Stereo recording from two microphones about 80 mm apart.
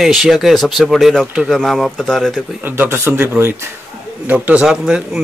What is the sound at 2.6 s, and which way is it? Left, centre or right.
A man's voice, right.